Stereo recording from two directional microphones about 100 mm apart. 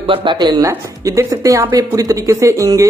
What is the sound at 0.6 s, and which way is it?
A man's voice, 30° right (ahead or behind).